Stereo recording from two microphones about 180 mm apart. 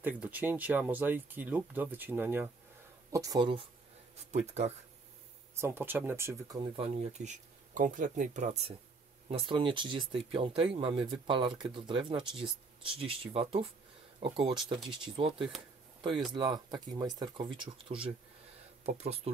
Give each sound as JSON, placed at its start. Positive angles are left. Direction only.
{"t": 0.0, "sound": "speech", "side_deg": -10}
{"t": 4.3, "sound": "speech", "side_deg": -40}
{"t": 5.6, "sound": "speech", "side_deg": -10}
{"t": 6.8, "sound": "speech", "side_deg": -40}
{"t": 9.3, "sound": "speech", "side_deg": -30}